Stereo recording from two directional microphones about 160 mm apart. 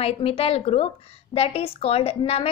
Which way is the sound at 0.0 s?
35° left (ahead or behind).